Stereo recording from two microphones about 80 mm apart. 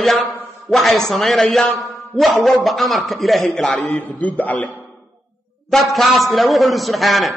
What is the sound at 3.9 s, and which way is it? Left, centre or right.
Speech, centre.